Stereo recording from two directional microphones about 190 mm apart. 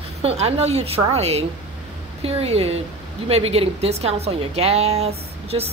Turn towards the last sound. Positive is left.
turn(degrees=-35)  # may be behind; listen again after turning